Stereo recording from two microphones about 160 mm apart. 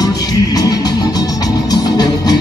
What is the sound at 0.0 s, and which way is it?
Music, 25° left (ahead or behind).